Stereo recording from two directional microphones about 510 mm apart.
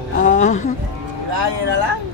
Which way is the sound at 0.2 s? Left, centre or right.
Centre.